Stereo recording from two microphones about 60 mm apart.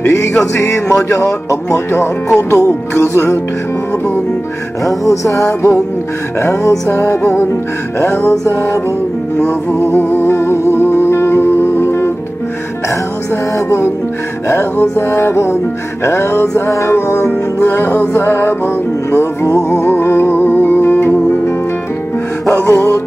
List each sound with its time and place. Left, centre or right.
0.4 s music: left
5.0 s music: left
9.9 s music: left
14.5 s music: left
22.5 s music: left